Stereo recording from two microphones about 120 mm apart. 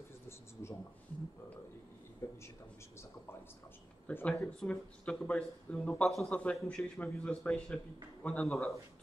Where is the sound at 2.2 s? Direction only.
20° left (ahead or behind).